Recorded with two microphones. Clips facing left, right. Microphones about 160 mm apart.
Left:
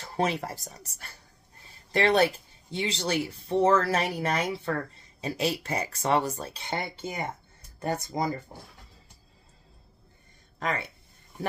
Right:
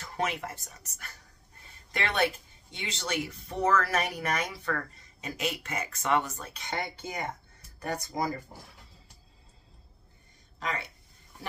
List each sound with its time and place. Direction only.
0.0 s speech: 30° left (ahead or behind)
10.6 s speech: 50° left (ahead or behind)